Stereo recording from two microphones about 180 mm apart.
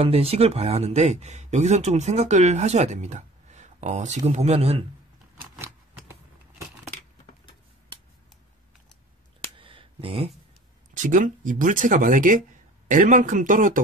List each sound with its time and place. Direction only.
0.0 s speech: 35° right (ahead or behind)
9.6 s a sound: 30° right (ahead or behind)
11.0 s speech: 45° right (ahead or behind)